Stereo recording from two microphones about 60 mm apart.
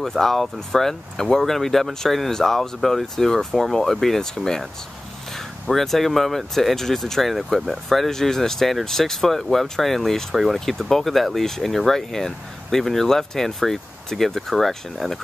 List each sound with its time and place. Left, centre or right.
0.0 s speech: centre
5.7 s speech: centre